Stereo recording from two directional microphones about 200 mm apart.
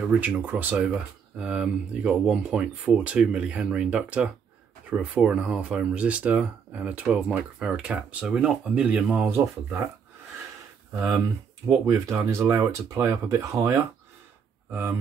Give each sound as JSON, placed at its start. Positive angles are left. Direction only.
{"t": 0.1, "sound": "speech", "side_deg": -10}
{"t": 11.8, "sound": "speech", "side_deg": -15}